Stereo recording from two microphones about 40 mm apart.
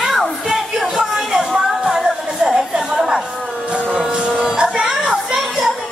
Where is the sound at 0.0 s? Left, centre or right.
Centre.